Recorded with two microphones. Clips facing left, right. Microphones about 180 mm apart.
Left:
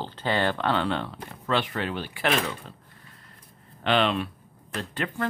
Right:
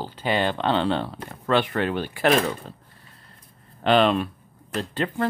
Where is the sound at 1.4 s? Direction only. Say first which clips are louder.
Right 5 dB; 55° right (ahead or behind).